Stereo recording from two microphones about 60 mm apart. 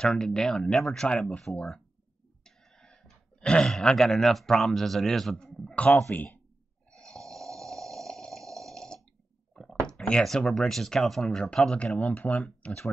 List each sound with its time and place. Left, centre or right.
0.0 s speech: centre
2.4 s a sound: centre
3.7 s speech: centre
5.4 s a sound: centre
6.1 s speech: left
6.9 s snoring: centre
9.5 s a sound: centre
10.2 s speech: centre
12.0 s speech: left